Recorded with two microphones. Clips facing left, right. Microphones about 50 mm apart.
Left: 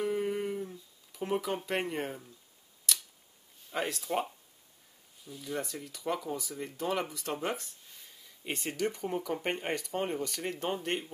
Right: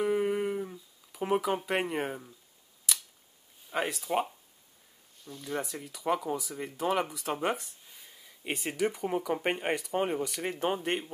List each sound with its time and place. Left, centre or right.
0.0 s a sound: centre
2.9 s scissors: centre
3.7 s speech: centre